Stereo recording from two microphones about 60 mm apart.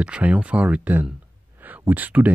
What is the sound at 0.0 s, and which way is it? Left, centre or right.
Speech, right.